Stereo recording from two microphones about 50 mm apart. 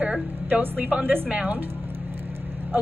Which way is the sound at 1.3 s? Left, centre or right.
Right.